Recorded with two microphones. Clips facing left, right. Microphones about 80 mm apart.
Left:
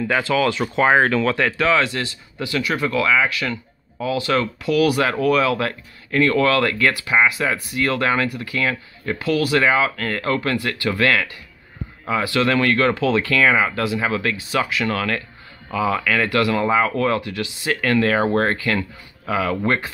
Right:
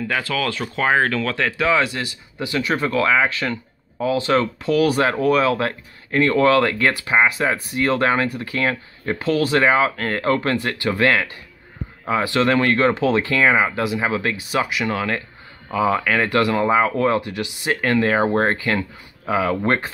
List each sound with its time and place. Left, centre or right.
0.1 s speech: centre
1.6 s speech: centre